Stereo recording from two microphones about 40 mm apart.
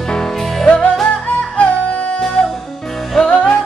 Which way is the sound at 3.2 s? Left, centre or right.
Left.